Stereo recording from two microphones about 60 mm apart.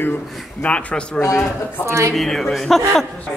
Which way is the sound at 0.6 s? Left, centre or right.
Left.